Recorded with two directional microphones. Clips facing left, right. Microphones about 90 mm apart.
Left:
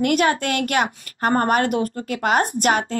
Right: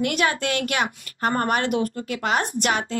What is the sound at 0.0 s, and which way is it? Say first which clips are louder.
Speech: left 4 dB; 45° left (ahead or behind).